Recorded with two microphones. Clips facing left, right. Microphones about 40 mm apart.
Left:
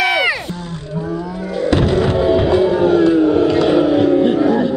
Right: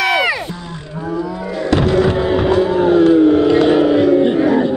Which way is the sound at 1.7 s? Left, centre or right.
Centre.